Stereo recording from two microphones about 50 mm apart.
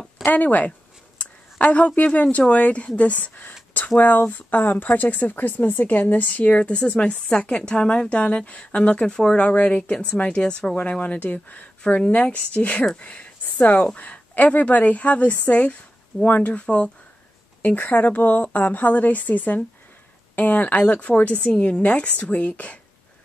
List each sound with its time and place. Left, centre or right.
0.2 s a sound: left
2.0 s a woman's voice: left
3.8 s a sound: left
4.3 s speech: left; by 9.4 s centre
9.4 s speech: left
11.8 s speech: centre
13.0 s a sound: left
13.9 s a woman's voice: left
16.5 s speech: left
17.6 s a woman's voice: left